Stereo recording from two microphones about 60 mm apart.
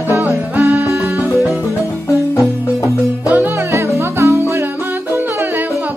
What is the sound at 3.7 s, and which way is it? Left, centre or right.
Music, right.